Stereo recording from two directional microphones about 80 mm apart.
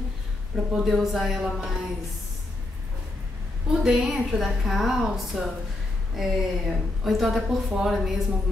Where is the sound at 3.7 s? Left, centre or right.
Centre.